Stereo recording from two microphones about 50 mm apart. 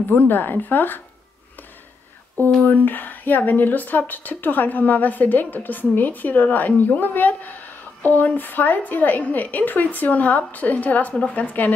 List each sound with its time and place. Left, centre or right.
0.1 s speech: left
2.6 s speech: left